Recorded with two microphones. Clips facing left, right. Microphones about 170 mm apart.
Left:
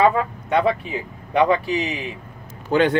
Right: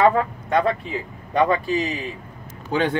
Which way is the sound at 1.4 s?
15° left (ahead or behind).